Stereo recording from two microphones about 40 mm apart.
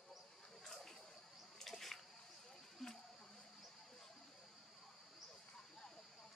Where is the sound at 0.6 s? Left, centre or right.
Centre.